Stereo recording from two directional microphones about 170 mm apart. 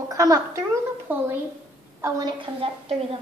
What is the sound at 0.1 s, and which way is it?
A woman's voice, 20° right (ahead or behind).